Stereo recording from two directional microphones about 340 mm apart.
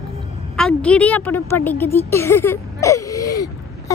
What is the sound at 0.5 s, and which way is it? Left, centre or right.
Speech, centre.